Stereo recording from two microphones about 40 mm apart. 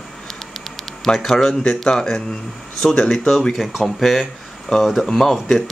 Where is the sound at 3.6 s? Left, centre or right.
Centre.